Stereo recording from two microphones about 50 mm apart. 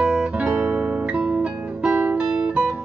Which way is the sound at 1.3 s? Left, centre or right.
Right.